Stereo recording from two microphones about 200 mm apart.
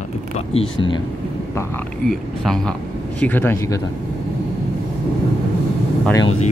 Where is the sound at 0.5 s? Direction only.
30° left (ahead or behind).